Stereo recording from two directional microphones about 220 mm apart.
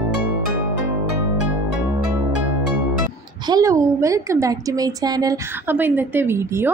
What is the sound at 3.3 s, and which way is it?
A woman's voice, 20° right (ahead or behind).